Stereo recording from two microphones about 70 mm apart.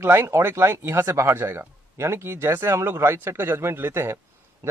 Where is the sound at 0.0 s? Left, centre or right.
Right.